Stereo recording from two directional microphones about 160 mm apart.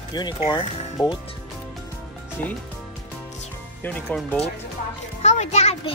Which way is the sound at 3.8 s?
10° left (ahead or behind).